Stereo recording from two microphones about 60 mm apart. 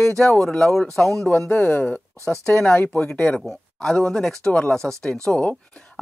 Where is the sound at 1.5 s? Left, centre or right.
Left.